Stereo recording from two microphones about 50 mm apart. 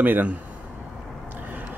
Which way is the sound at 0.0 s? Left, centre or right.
Right.